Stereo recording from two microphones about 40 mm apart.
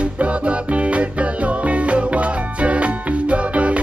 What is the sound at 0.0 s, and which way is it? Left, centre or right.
Music, right.